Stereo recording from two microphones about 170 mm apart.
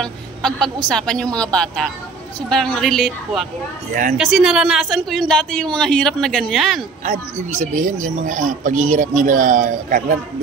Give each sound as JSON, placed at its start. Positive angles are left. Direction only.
{"t": 0.0, "sound": "a woman's voice", "side_deg": 5}
{"t": 7.1, "sound": "speech", "side_deg": -45}